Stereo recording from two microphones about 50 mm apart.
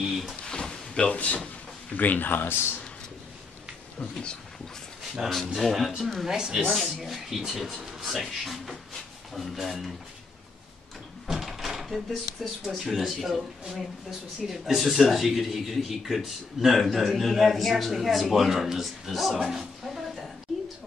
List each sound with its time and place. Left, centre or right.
0.1 s a sound: centre
0.5 s drawer open or close: centre
1.1 s speech: left
4.0 s speech: centre
5.5 s speech: centre
6.2 s speech: centre
6.6 s speech: centre
7.0 s speech: centre
11.2 s speech: centre